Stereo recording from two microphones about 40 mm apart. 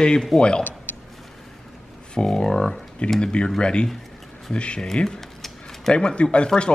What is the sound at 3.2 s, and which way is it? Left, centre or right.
Speech, left.